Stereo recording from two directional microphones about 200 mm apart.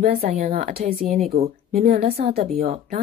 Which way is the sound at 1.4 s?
30° right (ahead or behind).